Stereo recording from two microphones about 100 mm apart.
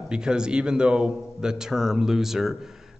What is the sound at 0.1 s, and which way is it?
A man's voice, 10° right (ahead or behind).